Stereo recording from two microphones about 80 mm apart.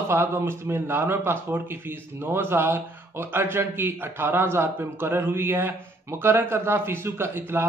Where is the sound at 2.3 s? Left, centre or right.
Right.